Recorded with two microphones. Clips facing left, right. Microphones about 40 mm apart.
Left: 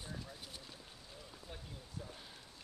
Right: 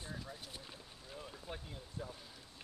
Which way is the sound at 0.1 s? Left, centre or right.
Centre.